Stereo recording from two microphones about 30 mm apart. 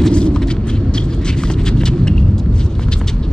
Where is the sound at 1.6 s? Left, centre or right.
Left.